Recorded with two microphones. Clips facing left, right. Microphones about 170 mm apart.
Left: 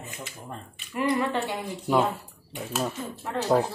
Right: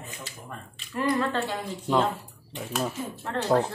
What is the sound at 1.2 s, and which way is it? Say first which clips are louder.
Speech: even; 15° left (ahead or behind).